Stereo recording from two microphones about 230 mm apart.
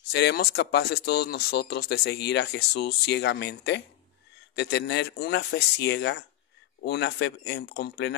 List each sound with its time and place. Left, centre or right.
0.1 s speech: left